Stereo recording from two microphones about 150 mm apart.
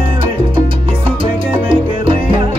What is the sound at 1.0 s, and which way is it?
Music, 35° right (ahead or behind).